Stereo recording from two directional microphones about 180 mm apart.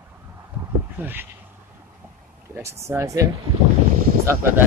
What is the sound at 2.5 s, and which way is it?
Speech, 15° right (ahead or behind).